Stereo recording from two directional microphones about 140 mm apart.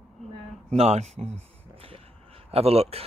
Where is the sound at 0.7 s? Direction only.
50° right (ahead or behind).